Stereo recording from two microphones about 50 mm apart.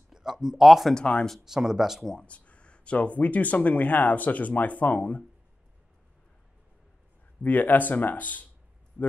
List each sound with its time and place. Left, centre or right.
0.1 s speech: centre
0.9 s speech: left
1.4 s speech: centre
2.1 s speech: left
7.4 s speech: left